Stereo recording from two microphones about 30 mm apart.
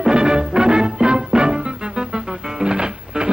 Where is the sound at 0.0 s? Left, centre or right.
Right.